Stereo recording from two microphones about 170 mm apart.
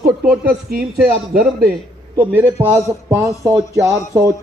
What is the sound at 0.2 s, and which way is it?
Speech, 5° right (ahead or behind).